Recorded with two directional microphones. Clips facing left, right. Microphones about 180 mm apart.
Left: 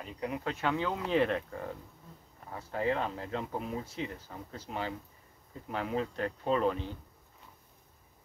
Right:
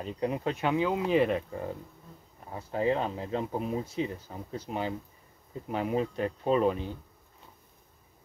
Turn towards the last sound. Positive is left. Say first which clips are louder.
# right 4 dB
turn(degrees=-10)  # may be behind; listen again after turning